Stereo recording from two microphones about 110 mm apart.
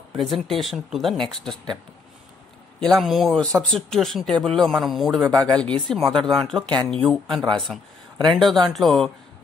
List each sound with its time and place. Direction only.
0.1 s speech: centre (ahead or behind)
2.8 s speech: 5° left (ahead or behind)